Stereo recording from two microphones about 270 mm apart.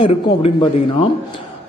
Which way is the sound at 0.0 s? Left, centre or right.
Centre.